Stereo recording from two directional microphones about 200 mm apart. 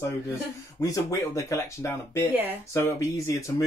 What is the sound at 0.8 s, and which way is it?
Speech, 15° left (ahead or behind).